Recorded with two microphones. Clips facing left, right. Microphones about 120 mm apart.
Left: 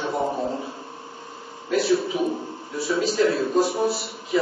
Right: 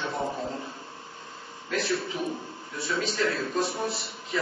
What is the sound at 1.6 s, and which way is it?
Speech, 5° left (ahead or behind).